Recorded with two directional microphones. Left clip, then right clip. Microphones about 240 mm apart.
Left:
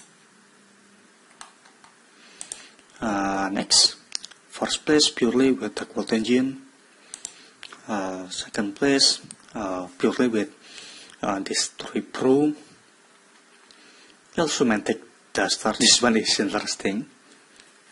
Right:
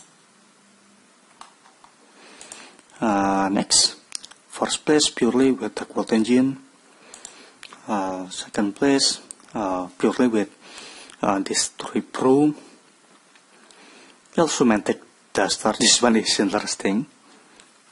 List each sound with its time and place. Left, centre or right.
2.2 s a sound: right
7.8 s speech: centre
13.8 s speech: right